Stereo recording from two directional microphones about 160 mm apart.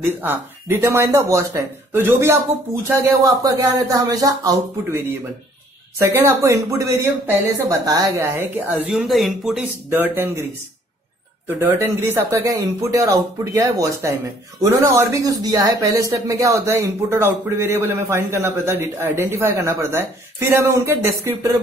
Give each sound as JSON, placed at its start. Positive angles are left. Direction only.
{"t": 0.2, "sound": "speech", "side_deg": -15}
{"t": 8.9, "sound": "speech", "side_deg": 0}
{"t": 9.8, "sound": "speech", "side_deg": -15}
{"t": 11.4, "sound": "speech", "side_deg": -15}